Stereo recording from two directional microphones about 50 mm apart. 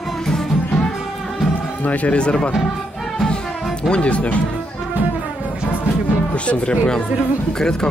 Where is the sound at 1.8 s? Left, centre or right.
Left.